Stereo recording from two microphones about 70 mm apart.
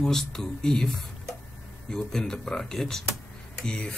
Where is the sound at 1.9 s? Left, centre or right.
Centre.